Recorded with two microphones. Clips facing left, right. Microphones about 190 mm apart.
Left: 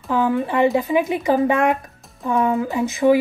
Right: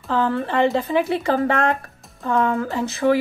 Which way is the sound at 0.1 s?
15° left (ahead or behind).